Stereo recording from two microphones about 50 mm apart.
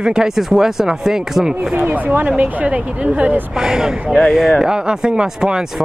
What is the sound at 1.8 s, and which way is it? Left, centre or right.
Speech, right.